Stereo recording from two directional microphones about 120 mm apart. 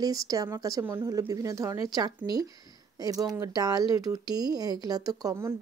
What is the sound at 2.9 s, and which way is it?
Speech, 30° right (ahead or behind).